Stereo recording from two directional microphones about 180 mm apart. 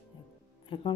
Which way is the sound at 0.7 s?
30° left (ahead or behind).